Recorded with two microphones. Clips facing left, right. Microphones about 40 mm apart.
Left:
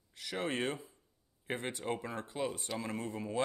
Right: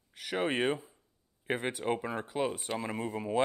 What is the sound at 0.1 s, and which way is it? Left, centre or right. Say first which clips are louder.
Speech: right 5 dB; right.